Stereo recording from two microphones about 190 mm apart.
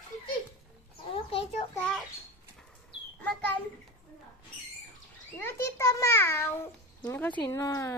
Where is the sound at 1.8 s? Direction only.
5° left (ahead or behind).